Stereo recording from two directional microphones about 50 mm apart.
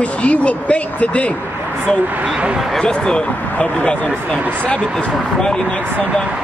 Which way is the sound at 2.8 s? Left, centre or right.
Centre.